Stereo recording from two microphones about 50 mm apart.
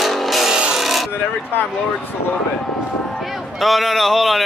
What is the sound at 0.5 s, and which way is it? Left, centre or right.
Wood, centre.